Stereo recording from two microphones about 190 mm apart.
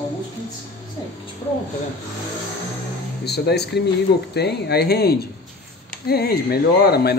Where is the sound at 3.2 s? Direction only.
60° left (ahead or behind).